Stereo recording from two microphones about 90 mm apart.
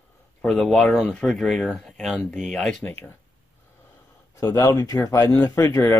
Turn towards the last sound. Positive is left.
turn(degrees=35)  # may be behind; listen again after turning